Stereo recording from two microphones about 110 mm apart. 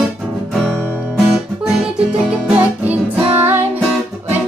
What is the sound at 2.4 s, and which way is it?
Music, 15° right (ahead or behind).